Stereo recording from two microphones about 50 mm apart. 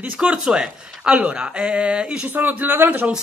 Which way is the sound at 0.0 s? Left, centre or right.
Right.